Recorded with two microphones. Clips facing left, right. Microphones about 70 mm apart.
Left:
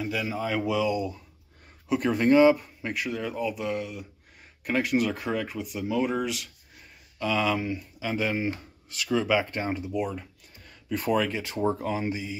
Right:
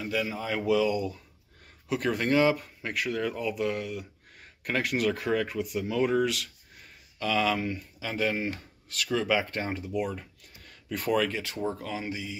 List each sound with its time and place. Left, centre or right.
0.0 s speech: centre
10.9 s speech: centre
11.6 s speech: left